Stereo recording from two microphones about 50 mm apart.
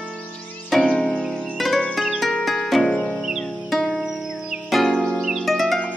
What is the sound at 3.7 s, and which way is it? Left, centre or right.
Music, centre.